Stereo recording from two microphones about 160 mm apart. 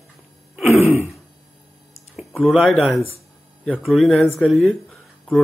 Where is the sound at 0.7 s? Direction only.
15° right (ahead or behind).